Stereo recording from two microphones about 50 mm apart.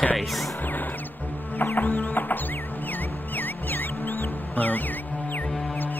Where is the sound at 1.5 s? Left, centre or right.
Left.